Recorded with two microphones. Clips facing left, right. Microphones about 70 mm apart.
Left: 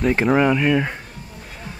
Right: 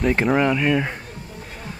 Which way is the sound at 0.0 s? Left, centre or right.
Centre.